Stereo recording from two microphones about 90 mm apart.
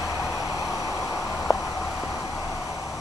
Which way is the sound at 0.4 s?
40° left (ahead or behind).